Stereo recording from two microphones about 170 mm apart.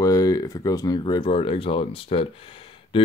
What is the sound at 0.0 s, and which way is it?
Speech, 20° left (ahead or behind).